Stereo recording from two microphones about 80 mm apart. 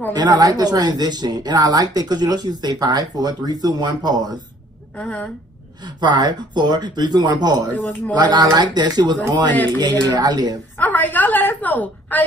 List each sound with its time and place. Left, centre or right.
0.1 s speech: right
4.9 s a woman's voice: centre
5.9 s speech: right
10.8 s a woman's voice: left